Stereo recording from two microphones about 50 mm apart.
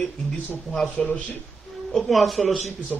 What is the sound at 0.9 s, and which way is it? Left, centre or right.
Speech, left.